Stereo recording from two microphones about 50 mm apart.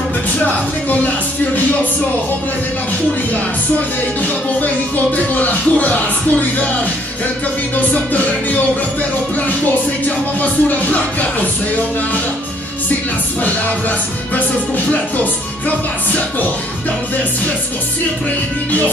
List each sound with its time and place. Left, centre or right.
5.1 s music: left
7.7 s music: left
10.0 s music: left
13.4 s music: left